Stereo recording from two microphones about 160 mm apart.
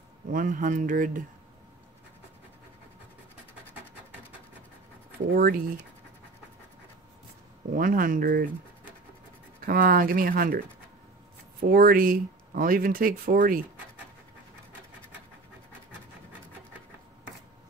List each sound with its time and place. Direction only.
0.3 s speech: 55° right (ahead or behind)
5.3 s speech: 65° right (ahead or behind)
7.7 s speech: 60° right (ahead or behind)
9.7 s speech: 60° right (ahead or behind)
11.6 s speech: 65° right (ahead or behind)